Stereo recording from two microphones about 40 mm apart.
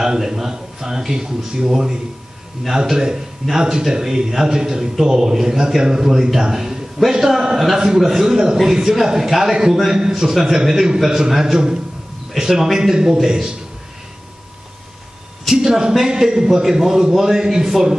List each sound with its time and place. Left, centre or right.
0.0 s a man's voice: centre
2.7 s a man's voice: centre
15.5 s a man's voice: centre